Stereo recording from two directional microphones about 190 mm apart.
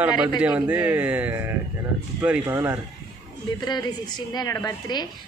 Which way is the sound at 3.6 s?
20° left (ahead or behind).